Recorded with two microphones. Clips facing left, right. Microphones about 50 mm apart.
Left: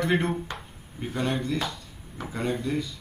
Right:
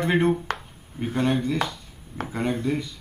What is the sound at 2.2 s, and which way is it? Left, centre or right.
Speech, right.